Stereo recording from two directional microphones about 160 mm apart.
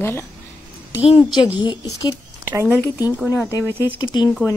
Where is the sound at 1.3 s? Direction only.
30° left (ahead or behind).